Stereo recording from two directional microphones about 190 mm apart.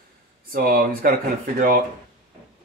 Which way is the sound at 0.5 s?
50° right (ahead or behind).